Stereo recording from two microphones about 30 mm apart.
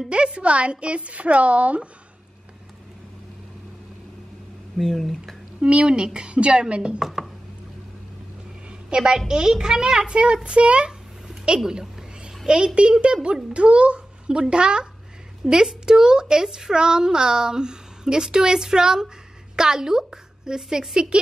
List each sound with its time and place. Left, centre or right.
0.1 s a woman's voice: right
4.7 s speech: centre
5.9 s a child's voice: right
7.0 s chopping: centre
8.9 s a child's voice: right
9.3 s a child's voice: right
12.4 s a child's voice: right
15.4 s chopping: centre
15.8 s a woman's voice: right